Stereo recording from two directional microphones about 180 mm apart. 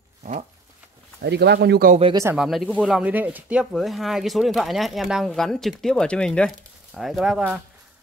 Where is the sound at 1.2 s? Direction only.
65° right (ahead or behind).